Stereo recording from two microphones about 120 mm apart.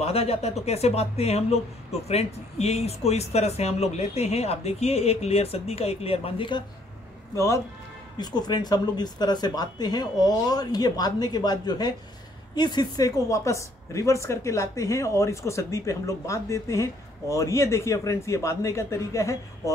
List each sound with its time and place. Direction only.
0.0 s speech: 60° left (ahead or behind)
7.3 s a woman's voice: 25° left (ahead or behind)
8.2 s a woman's voice: 35° left (ahead or behind)